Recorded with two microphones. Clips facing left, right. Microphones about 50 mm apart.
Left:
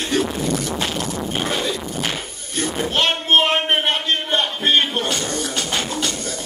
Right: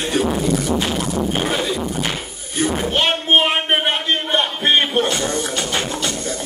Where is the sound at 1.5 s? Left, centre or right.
Centre.